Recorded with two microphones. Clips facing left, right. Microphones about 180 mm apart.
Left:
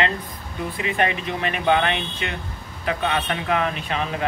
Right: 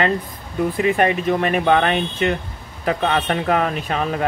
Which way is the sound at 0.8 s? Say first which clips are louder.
Right 5 dB; 45° right (ahead or behind).